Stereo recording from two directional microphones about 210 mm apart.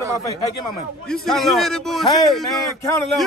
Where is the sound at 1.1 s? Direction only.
Centre (ahead or behind).